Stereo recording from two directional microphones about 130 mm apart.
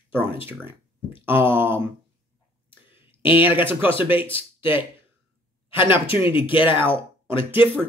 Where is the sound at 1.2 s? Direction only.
15° right (ahead or behind).